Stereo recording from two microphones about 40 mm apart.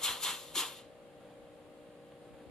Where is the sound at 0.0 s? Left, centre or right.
Centre.